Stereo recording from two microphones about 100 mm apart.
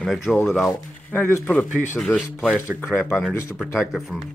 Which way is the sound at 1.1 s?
15° left (ahead or behind).